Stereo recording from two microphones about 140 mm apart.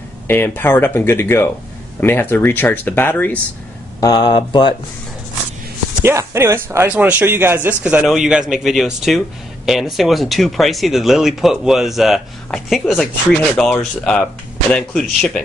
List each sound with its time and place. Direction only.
0.3 s speech: 15° left (ahead or behind)
4.0 s speech: 30° left (ahead or behind)
6.0 s speech: 20° right (ahead or behind); by 15.4 s 5° left (ahead or behind)